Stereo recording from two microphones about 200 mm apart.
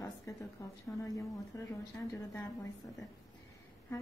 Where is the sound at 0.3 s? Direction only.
15° left (ahead or behind).